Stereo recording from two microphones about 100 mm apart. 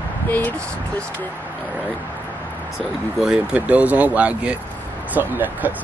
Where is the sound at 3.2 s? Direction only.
5° right (ahead or behind).